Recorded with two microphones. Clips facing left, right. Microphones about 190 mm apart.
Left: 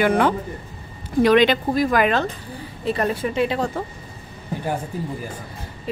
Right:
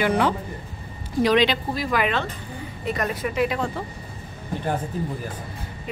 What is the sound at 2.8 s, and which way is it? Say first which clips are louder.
Speech: left 4 dB; 30° left (ahead or behind).